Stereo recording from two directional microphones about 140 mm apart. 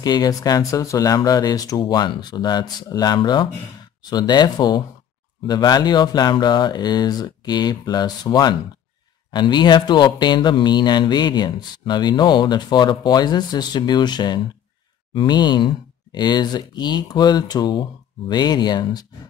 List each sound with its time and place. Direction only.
0.0 s speech: 30° left (ahead or behind)